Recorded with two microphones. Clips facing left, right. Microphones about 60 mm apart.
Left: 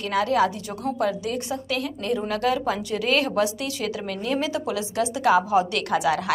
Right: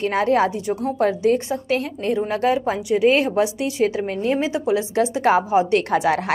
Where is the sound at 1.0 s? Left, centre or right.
Right.